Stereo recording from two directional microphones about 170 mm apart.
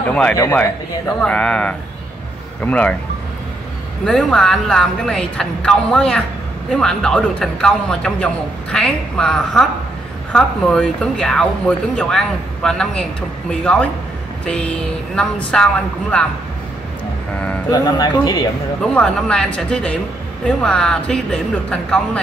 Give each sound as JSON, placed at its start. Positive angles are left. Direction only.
{"t": 0.1, "sound": "speech", "side_deg": 5}
{"t": 4.0, "sound": "speech", "side_deg": 5}
{"t": 17.6, "sound": "speech", "side_deg": 20}
{"t": 18.8, "sound": "speech", "side_deg": 5}